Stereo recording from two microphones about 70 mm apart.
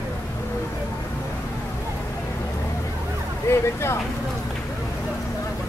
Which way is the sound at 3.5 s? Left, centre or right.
Left.